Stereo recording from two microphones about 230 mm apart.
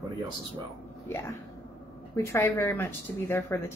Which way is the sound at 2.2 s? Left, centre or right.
Centre.